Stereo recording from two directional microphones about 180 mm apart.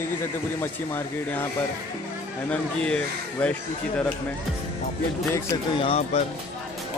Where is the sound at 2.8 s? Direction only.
5° left (ahead or behind).